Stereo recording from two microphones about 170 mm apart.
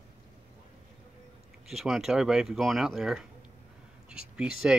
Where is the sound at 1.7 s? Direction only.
Centre (ahead or behind).